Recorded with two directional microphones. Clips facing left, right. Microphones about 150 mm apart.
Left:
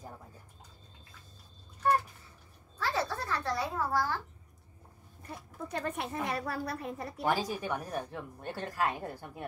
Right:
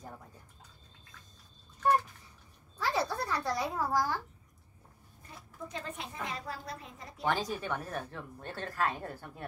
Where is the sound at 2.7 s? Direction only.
10° right (ahead or behind).